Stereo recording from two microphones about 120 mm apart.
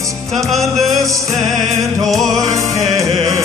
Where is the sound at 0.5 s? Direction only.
Centre (ahead or behind).